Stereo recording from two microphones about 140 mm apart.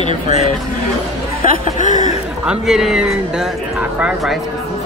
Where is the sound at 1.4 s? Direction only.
70° left (ahead or behind).